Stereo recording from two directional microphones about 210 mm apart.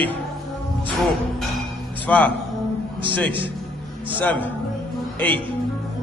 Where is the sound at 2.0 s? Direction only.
5° left (ahead or behind).